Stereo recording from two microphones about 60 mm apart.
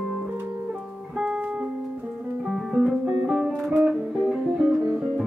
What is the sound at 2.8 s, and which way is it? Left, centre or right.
Music, centre.